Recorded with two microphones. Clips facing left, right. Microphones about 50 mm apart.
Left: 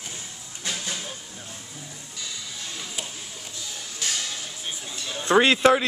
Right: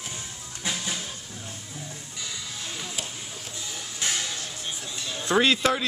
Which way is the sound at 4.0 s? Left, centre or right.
Centre.